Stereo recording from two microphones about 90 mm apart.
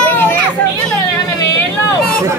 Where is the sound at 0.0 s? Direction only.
20° left (ahead or behind).